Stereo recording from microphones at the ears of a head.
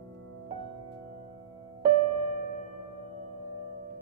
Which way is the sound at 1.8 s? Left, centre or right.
Right.